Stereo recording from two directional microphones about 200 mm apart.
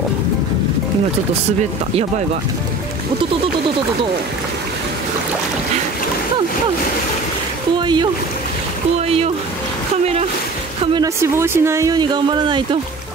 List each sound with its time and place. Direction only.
7.7 s speech: 25° right (ahead or behind)
10.9 s speech: 15° right (ahead or behind)